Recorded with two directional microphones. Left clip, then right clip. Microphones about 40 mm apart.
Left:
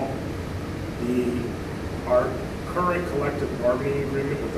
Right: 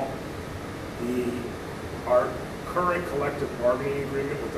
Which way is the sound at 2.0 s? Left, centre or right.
Right.